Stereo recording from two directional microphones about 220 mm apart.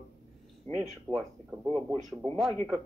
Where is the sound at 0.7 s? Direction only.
30° right (ahead or behind).